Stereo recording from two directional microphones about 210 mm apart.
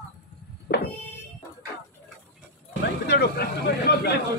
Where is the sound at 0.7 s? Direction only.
50° left (ahead or behind).